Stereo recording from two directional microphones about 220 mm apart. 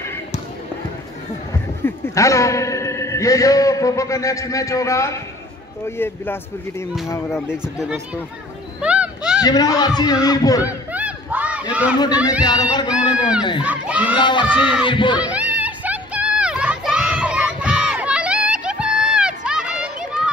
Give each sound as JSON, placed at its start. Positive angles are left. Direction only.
{"t": 1.5, "sound": "a man's voice", "side_deg": 15}
{"t": 7.3, "sound": "speech", "side_deg": -5}
{"t": 8.8, "sound": "a sound", "side_deg": -5}
{"t": 9.4, "sound": "a child's voice", "side_deg": 15}
{"t": 10.9, "sound": "crowd", "side_deg": -5}
{"t": 11.7, "sound": "speech", "side_deg": -5}
{"t": 12.4, "sound": "a child's voice", "side_deg": 20}
{"t": 13.6, "sound": "crowd", "side_deg": -5}
{"t": 14.1, "sound": "speech", "side_deg": 20}
{"t": 14.5, "sound": "speech", "side_deg": -5}
{"t": 14.9, "sound": "speech", "side_deg": 20}
{"t": 15.1, "sound": "a sound", "side_deg": -5}